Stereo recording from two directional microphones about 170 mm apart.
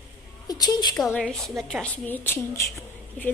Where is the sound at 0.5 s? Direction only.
20° left (ahead or behind).